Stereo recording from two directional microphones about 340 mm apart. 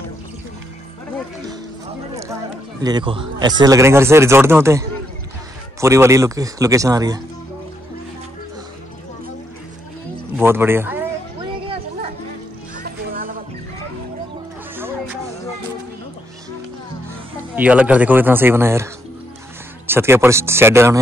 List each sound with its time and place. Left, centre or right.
2.8 s a man's voice: centre
10.3 s a man's voice: centre
11.6 s a sound: centre
12.8 s music: right
14.8 s music: centre
17.6 s speech: centre
19.9 s a man's voice: centre